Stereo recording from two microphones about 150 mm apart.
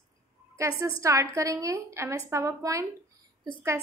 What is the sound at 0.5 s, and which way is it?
A woman's voice, 20° right (ahead or behind).